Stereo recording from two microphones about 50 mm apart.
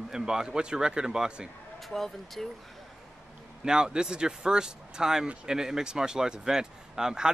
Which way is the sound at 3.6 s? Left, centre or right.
Centre.